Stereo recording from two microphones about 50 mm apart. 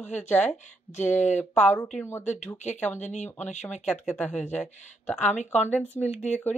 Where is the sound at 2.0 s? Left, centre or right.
Left.